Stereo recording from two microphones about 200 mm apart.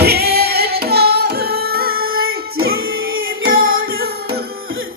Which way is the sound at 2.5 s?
90° right.